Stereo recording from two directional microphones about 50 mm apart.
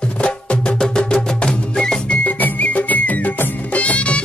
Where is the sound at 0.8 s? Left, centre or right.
Centre.